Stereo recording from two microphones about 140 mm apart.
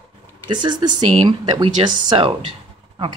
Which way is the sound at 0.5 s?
30° right (ahead or behind).